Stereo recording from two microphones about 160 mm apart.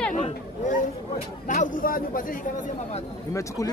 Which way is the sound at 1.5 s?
55° left (ahead or behind).